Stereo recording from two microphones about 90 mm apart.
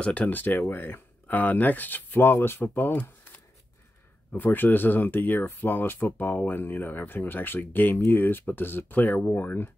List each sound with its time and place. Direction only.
0.0 s speech: 15° left (ahead or behind)
4.3 s speech: 20° left (ahead or behind)